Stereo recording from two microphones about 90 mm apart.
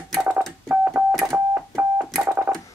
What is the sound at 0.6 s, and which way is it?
Keyboard, 25° right (ahead or behind).